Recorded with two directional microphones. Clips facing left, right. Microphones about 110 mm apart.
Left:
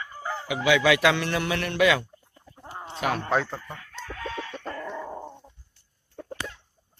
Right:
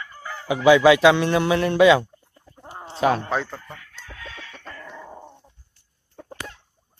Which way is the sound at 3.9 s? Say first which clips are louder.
Left 6 dB; 45° left (ahead or behind).